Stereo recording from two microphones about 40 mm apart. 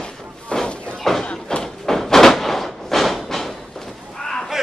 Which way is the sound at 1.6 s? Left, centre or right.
Centre.